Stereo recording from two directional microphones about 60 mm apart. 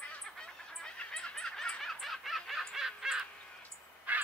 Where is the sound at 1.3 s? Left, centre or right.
Centre.